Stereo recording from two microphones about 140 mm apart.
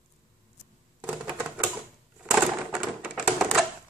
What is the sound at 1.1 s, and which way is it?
Typewriter, 10° right (ahead or behind).